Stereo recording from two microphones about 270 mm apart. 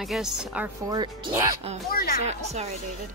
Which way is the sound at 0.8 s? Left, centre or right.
Centre.